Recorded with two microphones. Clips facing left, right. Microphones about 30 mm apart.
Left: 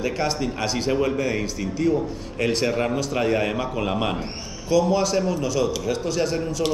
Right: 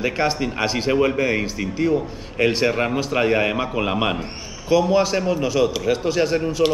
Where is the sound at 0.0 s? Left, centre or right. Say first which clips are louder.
Right 3 dB; right.